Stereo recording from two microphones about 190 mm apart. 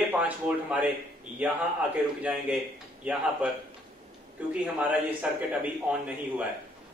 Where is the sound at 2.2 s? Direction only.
5° right (ahead or behind).